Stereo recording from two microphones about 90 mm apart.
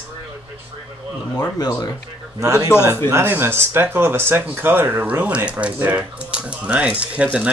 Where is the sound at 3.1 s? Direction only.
25° right (ahead or behind).